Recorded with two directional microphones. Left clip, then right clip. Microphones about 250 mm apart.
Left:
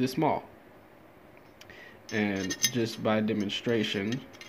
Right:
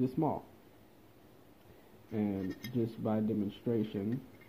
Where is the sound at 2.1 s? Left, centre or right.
Centre.